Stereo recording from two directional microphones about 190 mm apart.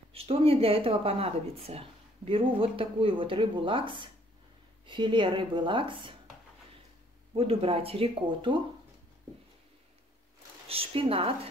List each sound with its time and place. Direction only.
0.1 s speech: 30° right (ahead or behind)
7.3 s speech: 30° right (ahead or behind)
10.7 s speech: 30° right (ahead or behind)